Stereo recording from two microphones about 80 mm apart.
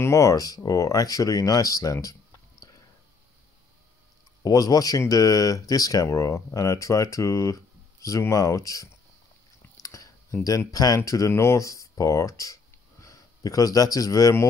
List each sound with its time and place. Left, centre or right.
0.0 s speech: left
4.4 s speech: left
9.8 s a sound: left
10.7 s speech: left